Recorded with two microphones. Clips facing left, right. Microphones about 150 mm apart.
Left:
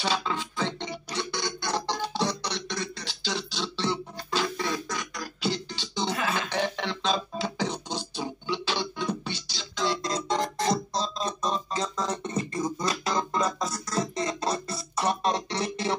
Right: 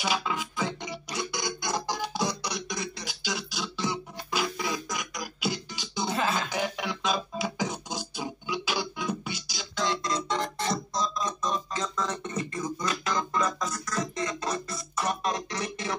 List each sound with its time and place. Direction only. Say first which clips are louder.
0.0 s music: left 1 dB; 10° right (ahead or behind)
10.0 s music: left 2 dB; 35° left (ahead or behind)